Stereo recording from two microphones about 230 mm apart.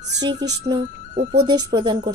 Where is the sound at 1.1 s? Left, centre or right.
Right.